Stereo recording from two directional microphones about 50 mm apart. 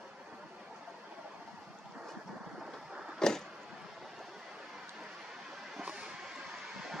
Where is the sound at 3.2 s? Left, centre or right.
Centre.